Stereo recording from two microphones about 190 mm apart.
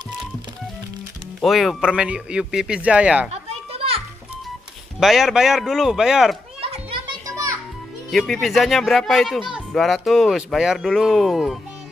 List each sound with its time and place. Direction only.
1.4 s speech: centre (ahead or behind)
3.3 s children playing: 30° right (ahead or behind)
5.0 s speech: centre (ahead or behind)
6.6 s children playing: 30° right (ahead or behind)
8.1 s speech: centre (ahead or behind)